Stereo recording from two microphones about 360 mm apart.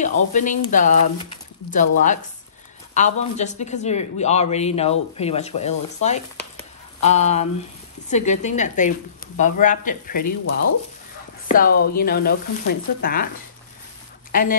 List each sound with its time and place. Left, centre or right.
0.0 s speech: centre
11.4 s speech: left